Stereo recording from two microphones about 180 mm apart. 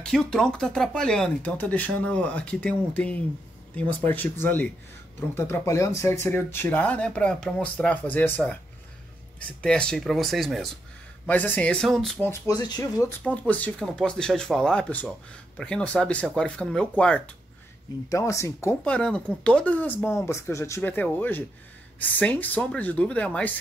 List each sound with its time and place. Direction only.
0.0 s speech: 5° left (ahead or behind)
9.6 s speech: 5° left (ahead or behind)
12.3 s speech: 20° left (ahead or behind)
13.2 s speech: 10° left (ahead or behind)
18.1 s speech: 15° left (ahead or behind)